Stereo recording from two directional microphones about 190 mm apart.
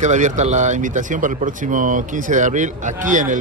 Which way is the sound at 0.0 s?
40° right (ahead or behind).